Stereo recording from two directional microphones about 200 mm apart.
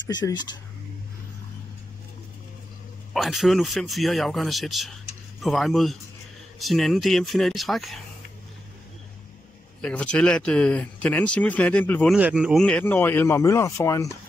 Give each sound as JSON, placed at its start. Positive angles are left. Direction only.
{"t": 0.1, "sound": "speech", "side_deg": 20}
{"t": 3.1, "sound": "speech", "side_deg": 0}
{"t": 9.8, "sound": "speech", "side_deg": 5}
{"t": 12.2, "sound": "speech", "side_deg": -5}